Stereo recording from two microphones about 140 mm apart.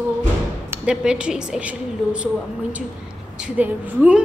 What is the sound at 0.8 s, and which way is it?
A woman's voice, 5° right (ahead or behind).